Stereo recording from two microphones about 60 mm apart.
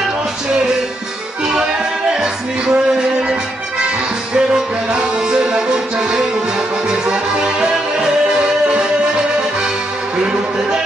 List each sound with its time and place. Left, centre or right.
2.1 s music: centre
4.4 s music: centre
10.1 s music: centre